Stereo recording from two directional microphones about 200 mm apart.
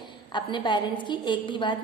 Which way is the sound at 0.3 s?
25° left (ahead or behind).